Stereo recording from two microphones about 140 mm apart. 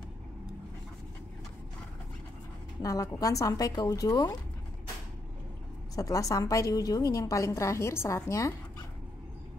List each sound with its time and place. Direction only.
2.8 s a woman's voice: 25° left (ahead or behind)
5.9 s a woman's voice: 25° left (ahead or behind)